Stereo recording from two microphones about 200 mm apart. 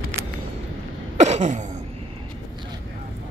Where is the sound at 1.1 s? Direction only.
35° right (ahead or behind).